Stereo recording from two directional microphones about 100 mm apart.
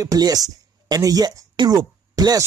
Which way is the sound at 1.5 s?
40° right (ahead or behind).